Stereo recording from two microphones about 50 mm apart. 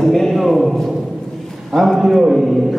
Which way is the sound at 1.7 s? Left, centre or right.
Centre.